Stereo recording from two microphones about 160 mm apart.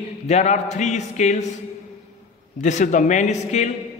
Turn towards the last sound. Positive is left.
turn(degrees=45)  # may be behind; listen again after turning